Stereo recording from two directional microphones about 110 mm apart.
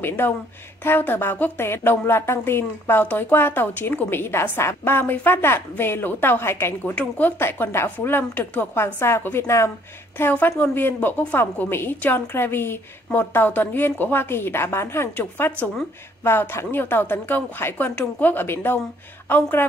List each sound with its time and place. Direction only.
0.0 s a woman's voice: 20° left (ahead or behind)